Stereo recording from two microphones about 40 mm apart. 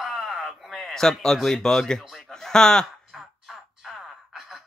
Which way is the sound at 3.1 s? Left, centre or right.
Centre.